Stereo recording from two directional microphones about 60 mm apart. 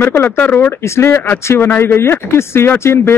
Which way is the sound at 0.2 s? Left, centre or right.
Left.